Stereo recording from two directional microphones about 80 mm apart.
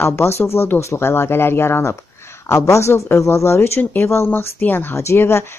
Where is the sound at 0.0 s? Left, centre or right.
Left.